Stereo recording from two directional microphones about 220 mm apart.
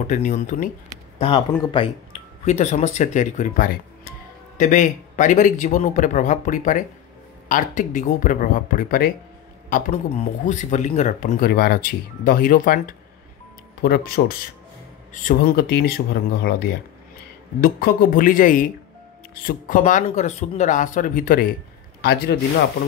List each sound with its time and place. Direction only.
0.0 s speech: 35° left (ahead or behind)
1.7 s speech: 25° left (ahead or behind); by 22.4 s 45° left (ahead or behind)